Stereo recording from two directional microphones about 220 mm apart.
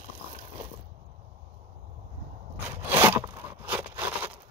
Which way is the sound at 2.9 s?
10° right (ahead or behind).